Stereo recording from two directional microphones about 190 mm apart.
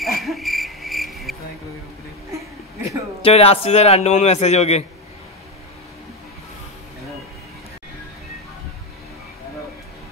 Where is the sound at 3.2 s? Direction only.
30° left (ahead or behind).